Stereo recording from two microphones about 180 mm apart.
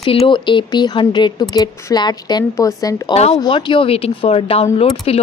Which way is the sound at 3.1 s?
35° left (ahead or behind).